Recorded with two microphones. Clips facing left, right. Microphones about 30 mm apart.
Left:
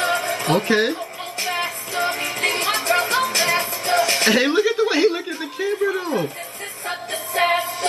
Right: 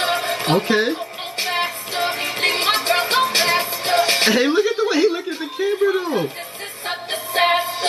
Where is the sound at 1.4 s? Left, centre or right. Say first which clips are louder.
Right 2 dB; right.